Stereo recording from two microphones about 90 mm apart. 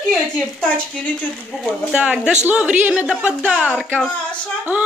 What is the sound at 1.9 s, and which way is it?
A woman's voice, 10° right (ahead or behind).